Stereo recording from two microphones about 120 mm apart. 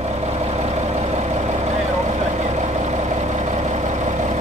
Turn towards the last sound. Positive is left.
turn(degrees=-75)  # may be behind; listen again after turning